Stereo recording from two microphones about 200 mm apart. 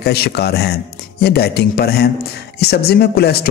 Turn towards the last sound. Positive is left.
turn(degrees=50)  # may be behind; listen again after turning